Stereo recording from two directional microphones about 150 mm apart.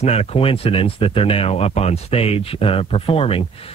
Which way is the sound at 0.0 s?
45° left (ahead or behind).